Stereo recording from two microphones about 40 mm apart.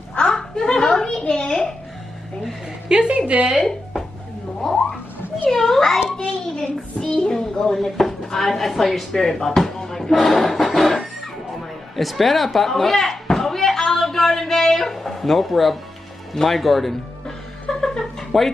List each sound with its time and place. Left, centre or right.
0.3 s a sound: centre
2.9 s a woman's voice: right
4.6 s music: centre
5.5 s child singing: centre
7.3 s speech: centre
9.2 s chopping: centre
10.2 s music: centre
11.9 s a sound: centre
16.3 s speech: centre
17.6 s a sound: centre